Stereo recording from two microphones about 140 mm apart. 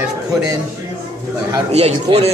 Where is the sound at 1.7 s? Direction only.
50° right (ahead or behind).